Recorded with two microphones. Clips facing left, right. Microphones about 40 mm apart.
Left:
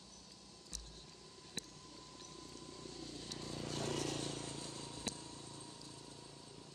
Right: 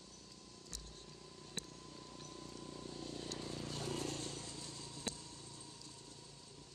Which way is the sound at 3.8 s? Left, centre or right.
Left.